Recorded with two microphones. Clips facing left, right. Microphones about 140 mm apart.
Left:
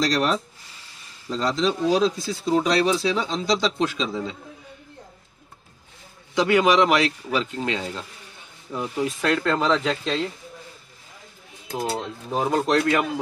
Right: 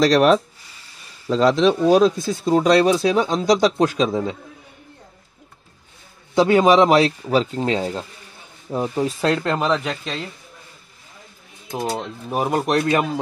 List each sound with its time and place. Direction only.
0.0 s speech: 65° right (ahead or behind)
6.3 s speech: 30° right (ahead or behind)
9.7 s speech: 5° right (ahead or behind)
11.9 s speech: 15° right (ahead or behind)